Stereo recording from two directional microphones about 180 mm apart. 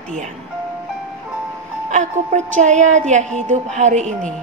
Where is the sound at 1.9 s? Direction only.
40° right (ahead or behind).